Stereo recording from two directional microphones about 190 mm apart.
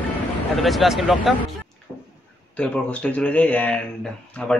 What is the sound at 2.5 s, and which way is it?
A man's voice, 5° left (ahead or behind).